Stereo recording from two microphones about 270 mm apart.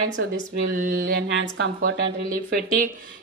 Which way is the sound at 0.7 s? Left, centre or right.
Right.